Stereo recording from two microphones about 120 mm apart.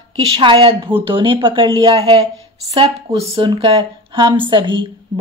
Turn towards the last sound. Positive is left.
turn(degrees=-45)  # may be behind; listen again after turning